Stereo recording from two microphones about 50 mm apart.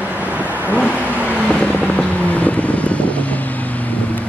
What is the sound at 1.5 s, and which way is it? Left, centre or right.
Vehicle, left.